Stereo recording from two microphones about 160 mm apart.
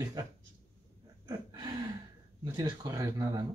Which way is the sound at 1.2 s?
25° right (ahead or behind).